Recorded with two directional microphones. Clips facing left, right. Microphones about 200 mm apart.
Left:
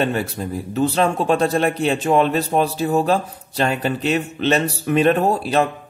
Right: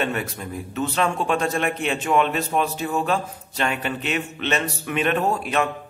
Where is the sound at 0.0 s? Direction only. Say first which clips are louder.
Left 5 dB; 35° left (ahead or behind).